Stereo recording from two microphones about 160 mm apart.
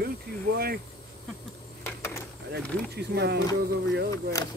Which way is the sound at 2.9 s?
90° right.